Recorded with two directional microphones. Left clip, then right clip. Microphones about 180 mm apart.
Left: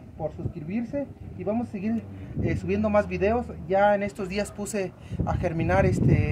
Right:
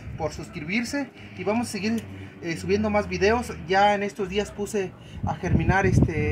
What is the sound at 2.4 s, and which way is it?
Speech, 35° left (ahead or behind).